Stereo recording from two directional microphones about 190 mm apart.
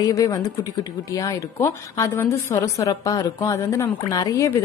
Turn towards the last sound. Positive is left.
turn(degrees=15)  # may be behind; listen again after turning